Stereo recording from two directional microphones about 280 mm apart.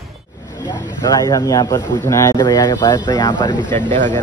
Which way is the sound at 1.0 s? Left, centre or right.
Centre.